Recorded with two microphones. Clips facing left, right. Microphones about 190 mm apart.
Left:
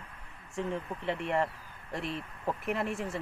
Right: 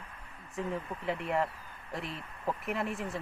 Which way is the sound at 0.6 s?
Centre (ahead or behind).